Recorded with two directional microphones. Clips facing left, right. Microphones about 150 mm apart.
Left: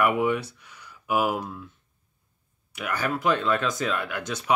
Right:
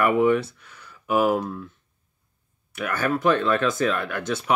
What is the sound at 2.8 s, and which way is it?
Speech, 15° left (ahead or behind).